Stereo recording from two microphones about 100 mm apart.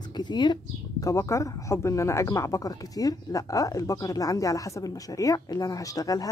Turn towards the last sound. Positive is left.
turn(degrees=40)  # may be behind; listen again after turning